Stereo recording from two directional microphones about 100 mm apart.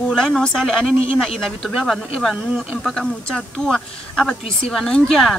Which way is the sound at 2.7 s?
5° left (ahead or behind).